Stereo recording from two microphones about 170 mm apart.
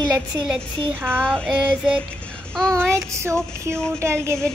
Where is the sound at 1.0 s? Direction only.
10° right (ahead or behind).